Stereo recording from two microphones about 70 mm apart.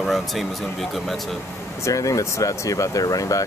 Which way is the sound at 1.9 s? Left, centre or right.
Left.